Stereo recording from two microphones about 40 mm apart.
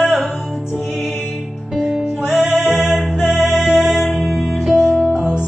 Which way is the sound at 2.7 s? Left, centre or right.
Centre.